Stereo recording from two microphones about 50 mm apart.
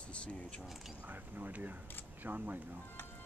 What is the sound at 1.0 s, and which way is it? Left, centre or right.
Mechanisms, right.